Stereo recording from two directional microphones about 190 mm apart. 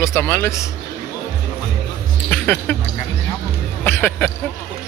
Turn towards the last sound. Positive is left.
turn(degrees=10)  # may be behind; listen again after turning